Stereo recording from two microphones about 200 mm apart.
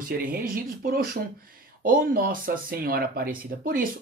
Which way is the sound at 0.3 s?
45° right (ahead or behind).